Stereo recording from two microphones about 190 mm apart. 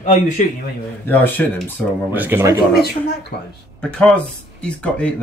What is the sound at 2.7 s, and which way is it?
Speech, 55° left (ahead or behind).